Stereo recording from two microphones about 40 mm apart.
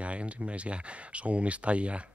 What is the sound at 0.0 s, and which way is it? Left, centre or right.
Speech, right.